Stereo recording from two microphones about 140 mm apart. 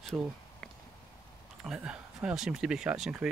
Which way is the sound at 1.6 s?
5° right (ahead or behind).